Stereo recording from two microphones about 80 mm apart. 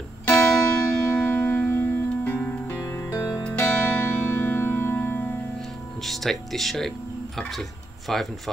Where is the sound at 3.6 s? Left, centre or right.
Centre.